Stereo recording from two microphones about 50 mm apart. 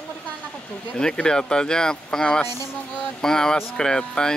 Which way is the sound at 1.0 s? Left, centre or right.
Centre.